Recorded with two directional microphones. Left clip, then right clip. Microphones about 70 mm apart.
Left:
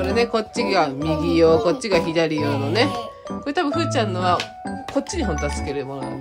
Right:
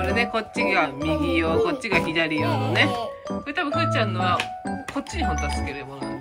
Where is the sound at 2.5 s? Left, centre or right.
Right.